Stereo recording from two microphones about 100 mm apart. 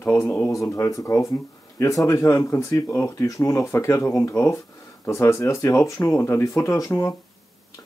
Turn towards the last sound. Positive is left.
turn(degrees=30)  # may be behind; listen again after turning